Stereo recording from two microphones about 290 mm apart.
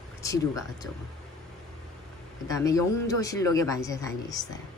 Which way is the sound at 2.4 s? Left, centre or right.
Centre.